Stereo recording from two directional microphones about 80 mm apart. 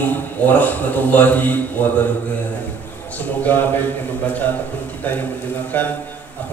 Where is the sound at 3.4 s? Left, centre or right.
Left.